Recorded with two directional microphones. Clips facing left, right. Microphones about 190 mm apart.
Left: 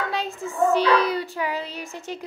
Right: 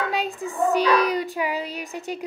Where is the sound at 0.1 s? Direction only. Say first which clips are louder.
Right 2 dB; 15° right (ahead or behind).